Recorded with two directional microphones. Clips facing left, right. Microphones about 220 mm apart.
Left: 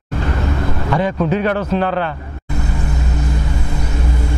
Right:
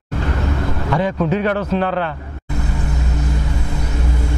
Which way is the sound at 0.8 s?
15° left (ahead or behind).